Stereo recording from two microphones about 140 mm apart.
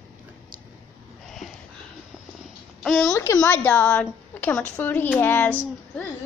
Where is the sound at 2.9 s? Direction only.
20° left (ahead or behind).